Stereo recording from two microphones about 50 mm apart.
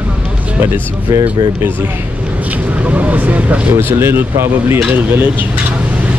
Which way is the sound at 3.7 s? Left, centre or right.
Right.